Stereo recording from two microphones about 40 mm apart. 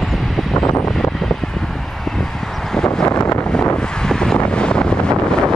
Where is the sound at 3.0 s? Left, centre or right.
Left.